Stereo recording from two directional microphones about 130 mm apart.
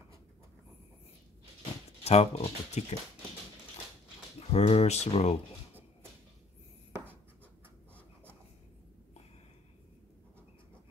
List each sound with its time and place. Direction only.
2.0 s speech: 50° left (ahead or behind)
4.4 s speech: 50° left (ahead or behind)